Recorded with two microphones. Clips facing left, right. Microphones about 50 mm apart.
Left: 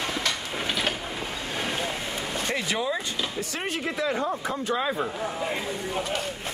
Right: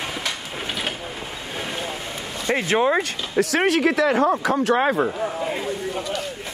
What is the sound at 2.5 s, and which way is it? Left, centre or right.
Speech, right.